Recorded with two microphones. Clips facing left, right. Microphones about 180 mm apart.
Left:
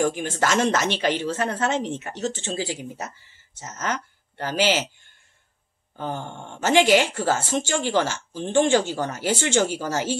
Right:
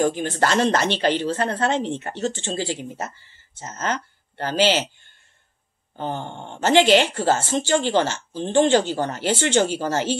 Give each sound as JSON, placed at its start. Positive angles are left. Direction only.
{"t": 0.1, "sound": "speech", "side_deg": 10}
{"t": 5.9, "sound": "a sound", "side_deg": -20}
{"t": 6.6, "sound": "speech", "side_deg": 10}